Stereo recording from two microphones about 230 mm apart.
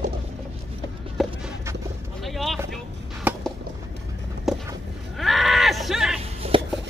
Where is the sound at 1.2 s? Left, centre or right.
Centre.